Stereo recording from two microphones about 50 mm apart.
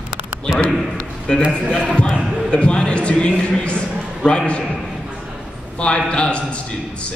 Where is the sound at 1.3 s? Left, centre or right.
Centre.